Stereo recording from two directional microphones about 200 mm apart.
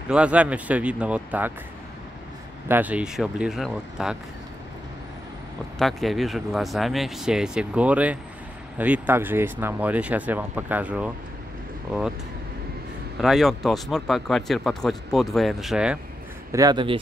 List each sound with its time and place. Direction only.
0.1 s speech: 5° right (ahead or behind)
2.7 s speech: 5° right (ahead or behind)
5.8 s speech: centre (ahead or behind)
13.2 s speech: centre (ahead or behind)
16.5 s speech: 20° right (ahead or behind)